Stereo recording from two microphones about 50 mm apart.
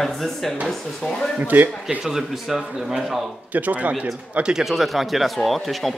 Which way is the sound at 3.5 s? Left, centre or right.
Right.